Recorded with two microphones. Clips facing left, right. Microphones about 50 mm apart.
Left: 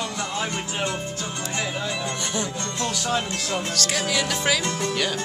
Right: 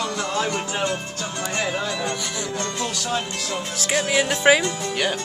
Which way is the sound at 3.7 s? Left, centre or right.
Centre.